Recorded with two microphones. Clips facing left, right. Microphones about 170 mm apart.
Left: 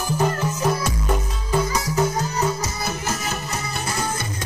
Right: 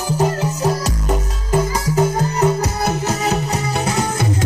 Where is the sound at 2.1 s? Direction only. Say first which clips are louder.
Right 6 dB; 60° right (ahead or behind).